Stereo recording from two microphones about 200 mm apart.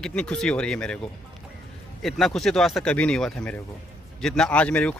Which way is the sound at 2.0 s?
Centre (ahead or behind).